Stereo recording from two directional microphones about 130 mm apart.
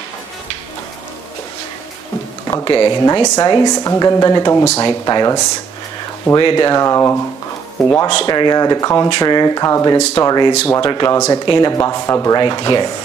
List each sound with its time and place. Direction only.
2.6 s a woman's voice: 30° left (ahead or behind)
8.1 s a woman's voice: 40° left (ahead or behind)